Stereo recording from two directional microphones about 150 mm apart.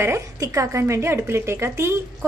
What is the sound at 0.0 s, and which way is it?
A woman's voice, 20° right (ahead or behind).